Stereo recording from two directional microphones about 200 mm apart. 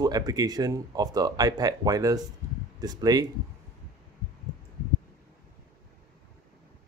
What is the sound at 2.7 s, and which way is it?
Speech, 20° right (ahead or behind).